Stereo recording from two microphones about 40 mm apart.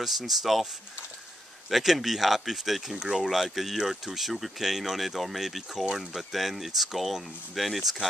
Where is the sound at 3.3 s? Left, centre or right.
Centre.